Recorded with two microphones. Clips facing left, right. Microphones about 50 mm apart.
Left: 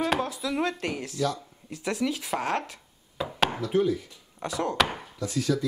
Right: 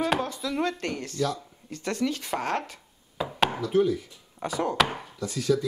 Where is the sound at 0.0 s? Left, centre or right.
Centre.